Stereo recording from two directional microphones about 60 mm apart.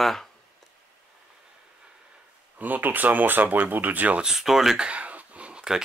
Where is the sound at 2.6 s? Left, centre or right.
Right.